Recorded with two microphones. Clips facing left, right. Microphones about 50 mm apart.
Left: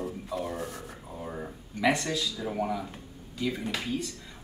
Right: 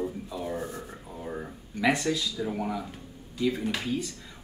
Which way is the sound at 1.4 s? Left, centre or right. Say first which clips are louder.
Left 1 dB; centre.